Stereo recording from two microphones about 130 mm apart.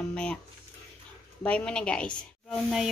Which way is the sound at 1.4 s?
10° left (ahead or behind).